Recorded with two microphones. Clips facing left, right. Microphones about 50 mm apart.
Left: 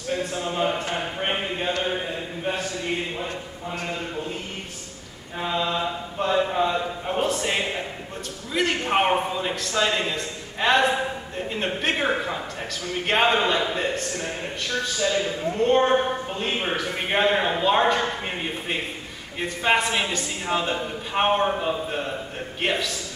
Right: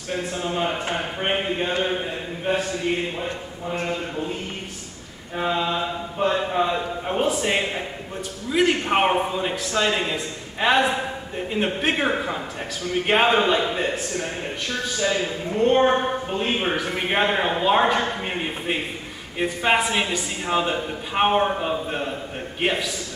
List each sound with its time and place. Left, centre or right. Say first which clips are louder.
0.2 s a man's voice: right 2 dB; centre
3.7 s a man's voice: right 4 dB; centre
5.4 s a man's voice: right 2 dB; centre